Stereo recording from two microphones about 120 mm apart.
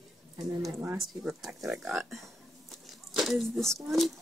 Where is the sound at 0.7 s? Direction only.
20° right (ahead or behind).